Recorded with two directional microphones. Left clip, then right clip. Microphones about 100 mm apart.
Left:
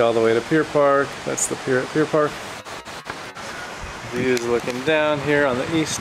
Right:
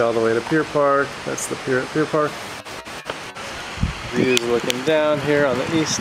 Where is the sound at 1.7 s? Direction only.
40° left (ahead or behind).